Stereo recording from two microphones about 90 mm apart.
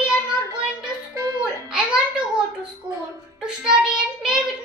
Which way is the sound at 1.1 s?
40° right (ahead or behind).